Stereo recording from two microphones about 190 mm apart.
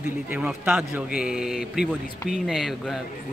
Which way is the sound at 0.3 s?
5° right (ahead or behind).